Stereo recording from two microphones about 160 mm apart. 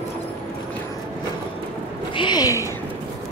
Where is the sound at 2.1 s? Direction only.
30° left (ahead or behind).